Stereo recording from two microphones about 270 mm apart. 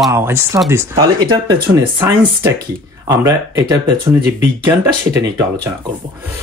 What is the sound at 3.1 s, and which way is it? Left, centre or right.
Speech, centre.